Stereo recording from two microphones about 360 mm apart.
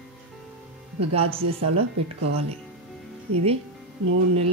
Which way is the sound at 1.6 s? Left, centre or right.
Right.